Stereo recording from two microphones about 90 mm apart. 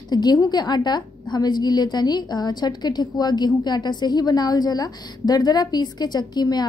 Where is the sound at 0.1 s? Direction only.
50° left (ahead or behind).